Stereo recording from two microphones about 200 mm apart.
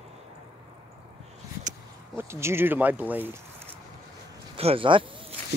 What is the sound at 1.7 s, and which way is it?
Speech, 15° right (ahead or behind).